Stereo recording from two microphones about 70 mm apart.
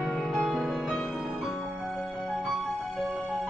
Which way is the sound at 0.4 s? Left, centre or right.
Centre.